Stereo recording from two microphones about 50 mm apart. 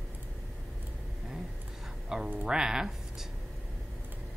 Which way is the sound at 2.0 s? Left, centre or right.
Centre.